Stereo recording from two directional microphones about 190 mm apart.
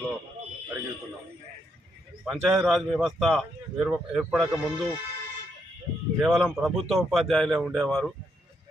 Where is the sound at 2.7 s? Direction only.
5° right (ahead or behind).